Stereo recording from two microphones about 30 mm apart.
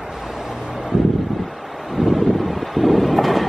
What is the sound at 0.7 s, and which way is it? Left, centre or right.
Vehicle, centre.